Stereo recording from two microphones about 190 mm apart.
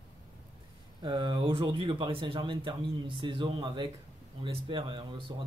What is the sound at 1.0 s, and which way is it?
Speech, 25° right (ahead or behind).